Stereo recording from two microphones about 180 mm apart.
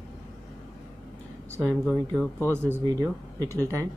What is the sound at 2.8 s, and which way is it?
Speech, 20° right (ahead or behind).